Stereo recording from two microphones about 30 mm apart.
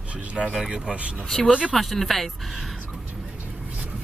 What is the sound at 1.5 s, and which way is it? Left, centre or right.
Speech, right.